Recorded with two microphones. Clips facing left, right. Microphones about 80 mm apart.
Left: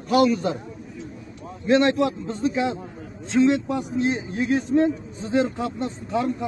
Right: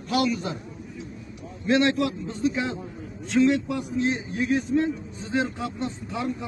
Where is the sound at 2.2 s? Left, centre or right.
Left.